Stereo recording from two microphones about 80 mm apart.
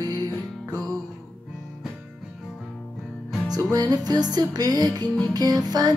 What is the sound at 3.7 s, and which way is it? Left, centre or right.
Music, right.